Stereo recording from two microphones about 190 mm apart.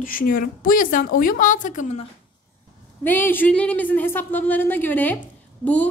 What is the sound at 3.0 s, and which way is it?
A woman's voice, 10° left (ahead or behind).